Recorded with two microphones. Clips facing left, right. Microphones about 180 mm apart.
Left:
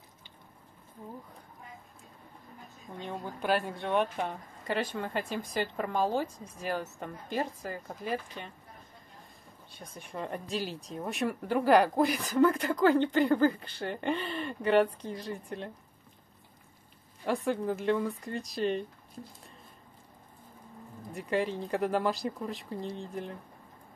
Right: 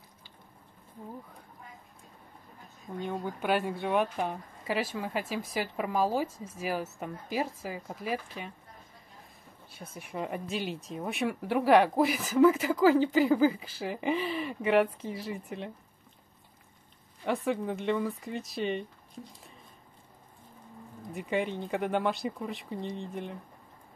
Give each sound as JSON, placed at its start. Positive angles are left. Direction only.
{"t": 3.0, "sound": "speech", "side_deg": -5}
{"t": 9.9, "sound": "speech", "side_deg": -5}
{"t": 17.2, "sound": "speech", "side_deg": 0}
{"t": 21.1, "sound": "speech", "side_deg": 0}